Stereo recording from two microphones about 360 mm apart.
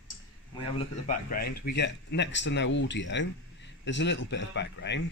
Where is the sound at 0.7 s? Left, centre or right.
Left.